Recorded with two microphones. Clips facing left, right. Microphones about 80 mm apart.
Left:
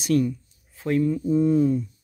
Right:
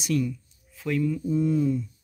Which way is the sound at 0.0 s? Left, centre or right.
Left.